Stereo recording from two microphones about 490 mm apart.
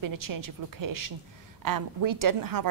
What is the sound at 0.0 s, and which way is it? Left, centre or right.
A woman's voice, right.